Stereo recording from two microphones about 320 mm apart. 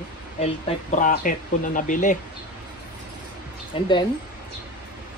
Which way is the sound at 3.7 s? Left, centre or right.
Centre.